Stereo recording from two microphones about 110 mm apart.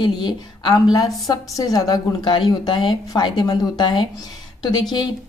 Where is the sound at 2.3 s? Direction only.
50° left (ahead or behind).